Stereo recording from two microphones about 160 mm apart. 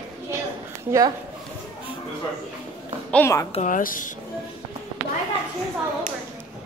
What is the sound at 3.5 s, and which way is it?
Speech, 50° left (ahead or behind).